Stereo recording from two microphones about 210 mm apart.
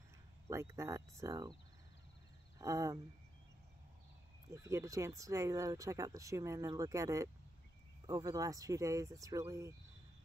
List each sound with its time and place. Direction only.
0.5 s speech: 15° right (ahead or behind)
2.6 s speech: 15° right (ahead or behind)
4.5 s speech: 15° right (ahead or behind)